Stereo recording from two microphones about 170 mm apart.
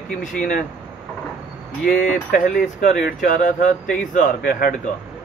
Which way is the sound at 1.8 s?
55° left (ahead or behind).